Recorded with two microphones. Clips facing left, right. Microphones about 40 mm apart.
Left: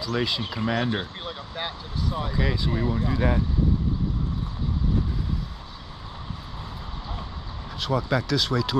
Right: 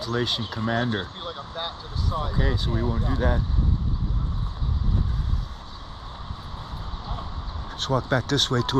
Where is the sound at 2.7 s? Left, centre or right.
Left.